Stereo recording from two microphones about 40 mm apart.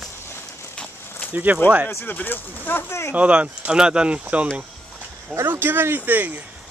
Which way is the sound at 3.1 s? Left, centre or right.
Right.